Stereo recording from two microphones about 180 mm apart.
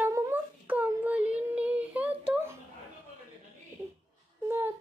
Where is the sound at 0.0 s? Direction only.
15° right (ahead or behind).